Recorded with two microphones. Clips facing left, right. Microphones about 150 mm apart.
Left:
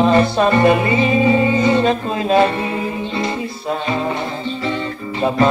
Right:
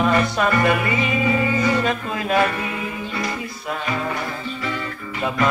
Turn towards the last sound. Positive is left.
turn(degrees=30)  # may be behind; listen again after turning